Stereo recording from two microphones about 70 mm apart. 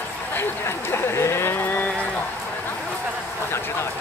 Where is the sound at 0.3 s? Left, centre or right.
Left.